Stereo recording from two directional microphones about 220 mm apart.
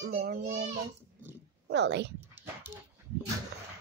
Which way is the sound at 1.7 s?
50° right (ahead or behind).